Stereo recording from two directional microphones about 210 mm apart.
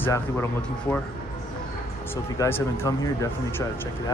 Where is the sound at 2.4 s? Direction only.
15° left (ahead or behind).